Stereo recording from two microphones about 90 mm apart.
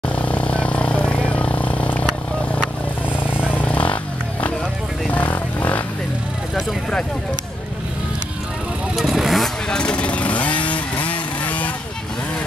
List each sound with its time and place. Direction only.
0.2 s vehicle: 15° left (ahead or behind)
8.9 s vehicle: centre (ahead or behind); by 11.7 s 15° left (ahead or behind)